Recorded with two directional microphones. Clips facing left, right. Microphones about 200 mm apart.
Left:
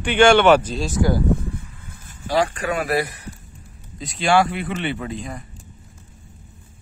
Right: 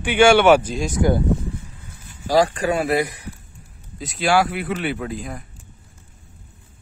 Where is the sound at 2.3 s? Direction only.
35° right (ahead or behind).